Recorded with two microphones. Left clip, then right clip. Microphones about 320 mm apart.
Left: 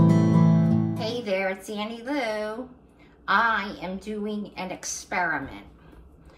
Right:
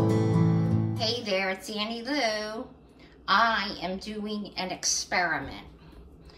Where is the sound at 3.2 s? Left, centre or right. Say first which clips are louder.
Left 1 dB; centre.